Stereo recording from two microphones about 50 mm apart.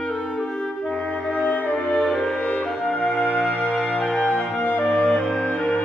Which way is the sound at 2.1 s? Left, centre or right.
Centre.